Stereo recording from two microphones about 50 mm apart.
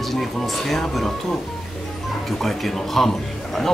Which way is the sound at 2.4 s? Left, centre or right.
Centre.